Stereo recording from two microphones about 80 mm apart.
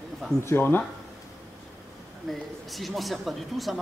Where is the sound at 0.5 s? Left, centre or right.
Left.